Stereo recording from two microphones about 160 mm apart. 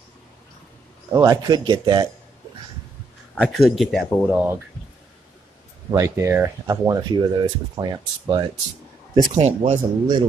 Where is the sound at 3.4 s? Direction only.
Centre (ahead or behind).